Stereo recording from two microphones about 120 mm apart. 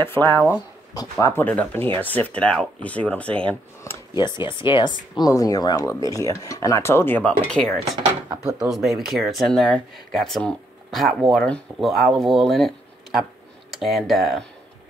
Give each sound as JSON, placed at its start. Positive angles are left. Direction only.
{"t": 0.0, "sound": "speech", "side_deg": 20}
{"t": 4.1, "sound": "speech", "side_deg": 40}